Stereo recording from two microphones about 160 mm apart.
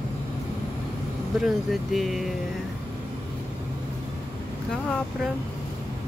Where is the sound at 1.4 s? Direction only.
Centre (ahead or behind).